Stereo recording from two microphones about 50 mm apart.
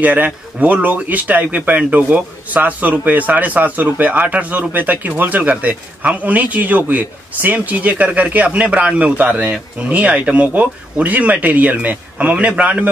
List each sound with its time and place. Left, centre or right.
0.0 s speech: right